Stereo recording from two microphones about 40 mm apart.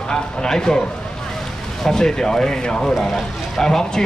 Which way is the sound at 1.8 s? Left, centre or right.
Centre.